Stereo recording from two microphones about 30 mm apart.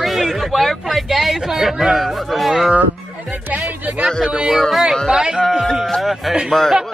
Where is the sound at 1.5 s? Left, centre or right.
Centre.